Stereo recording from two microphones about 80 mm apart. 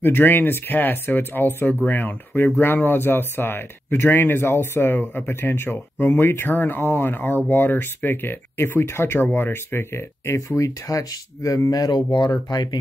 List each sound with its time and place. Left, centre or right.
0.0 s speech: left
12.5 s speech: left